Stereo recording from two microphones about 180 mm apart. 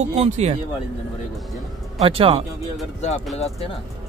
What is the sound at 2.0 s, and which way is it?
Speech, 25° right (ahead or behind).